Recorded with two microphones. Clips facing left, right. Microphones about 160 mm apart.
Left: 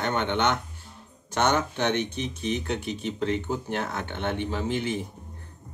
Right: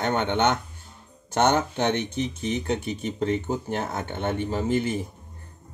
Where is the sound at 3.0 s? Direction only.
45° right (ahead or behind).